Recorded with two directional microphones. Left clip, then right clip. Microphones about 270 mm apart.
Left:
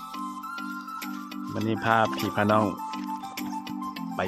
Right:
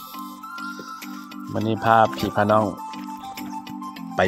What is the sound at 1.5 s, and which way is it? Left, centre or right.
Speech, centre.